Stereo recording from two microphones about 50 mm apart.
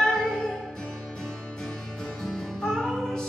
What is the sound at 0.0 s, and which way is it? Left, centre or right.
Music, centre.